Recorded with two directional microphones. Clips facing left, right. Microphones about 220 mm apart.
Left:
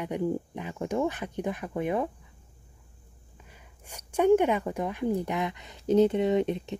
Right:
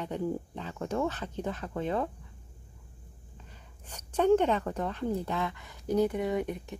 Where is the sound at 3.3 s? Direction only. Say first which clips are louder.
Left 1 dB; 10° left (ahead or behind).